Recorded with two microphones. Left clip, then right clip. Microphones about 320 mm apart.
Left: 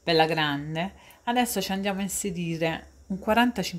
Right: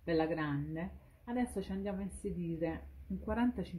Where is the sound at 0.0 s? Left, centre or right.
Left.